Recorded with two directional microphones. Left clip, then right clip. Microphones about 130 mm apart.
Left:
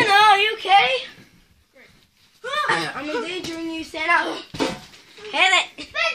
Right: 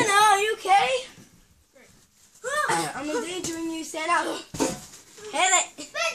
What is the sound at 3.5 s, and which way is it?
Speech, 5° right (ahead or behind).